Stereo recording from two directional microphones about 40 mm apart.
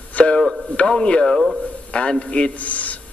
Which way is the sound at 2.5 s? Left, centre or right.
Left.